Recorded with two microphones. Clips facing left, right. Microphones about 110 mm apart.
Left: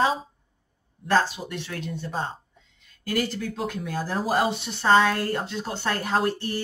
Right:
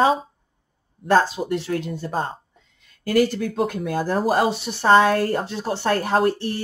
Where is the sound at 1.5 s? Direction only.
40° right (ahead or behind).